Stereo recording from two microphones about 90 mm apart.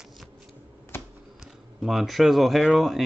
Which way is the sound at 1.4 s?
Centre (ahead or behind).